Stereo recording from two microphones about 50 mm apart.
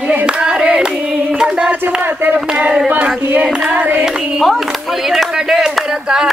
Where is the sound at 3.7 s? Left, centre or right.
Right.